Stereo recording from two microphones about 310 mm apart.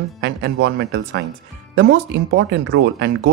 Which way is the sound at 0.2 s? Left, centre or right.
Right.